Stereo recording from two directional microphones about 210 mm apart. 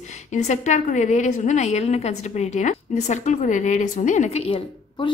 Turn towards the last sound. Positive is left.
turn(degrees=25)  # may be behind; listen again after turning